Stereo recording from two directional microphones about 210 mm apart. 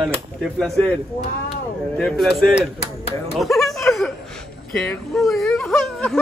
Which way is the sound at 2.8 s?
30° left (ahead or behind).